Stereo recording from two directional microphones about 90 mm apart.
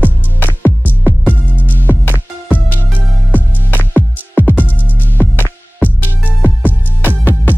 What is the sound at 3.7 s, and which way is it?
Music, 20° left (ahead or behind).